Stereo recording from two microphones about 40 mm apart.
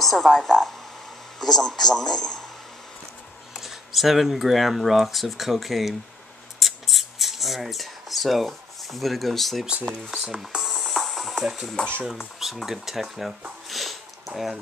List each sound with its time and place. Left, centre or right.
0.0 s a woman's voice: centre
1.4 s a man's voice: centre
3.5 s speech: centre
6.6 s a sound: centre
10.1 s speech: centre
10.6 s music: centre
11.7 s speech: left
12.4 s speech: centre
13.7 s sniff: centre